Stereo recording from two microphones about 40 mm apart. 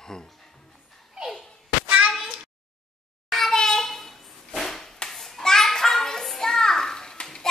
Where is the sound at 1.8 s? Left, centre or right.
Right.